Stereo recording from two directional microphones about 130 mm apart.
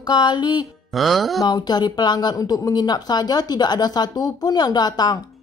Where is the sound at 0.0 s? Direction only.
30° left (ahead or behind).